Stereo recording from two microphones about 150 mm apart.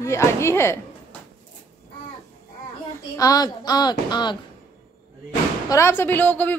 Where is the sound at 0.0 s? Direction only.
20° left (ahead or behind).